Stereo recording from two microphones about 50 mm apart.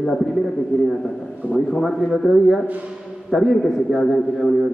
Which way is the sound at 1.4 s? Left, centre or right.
Right.